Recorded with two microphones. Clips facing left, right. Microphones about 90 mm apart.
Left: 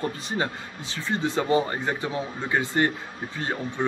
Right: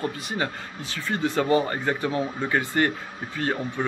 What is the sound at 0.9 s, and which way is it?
A man's voice, 25° left (ahead or behind).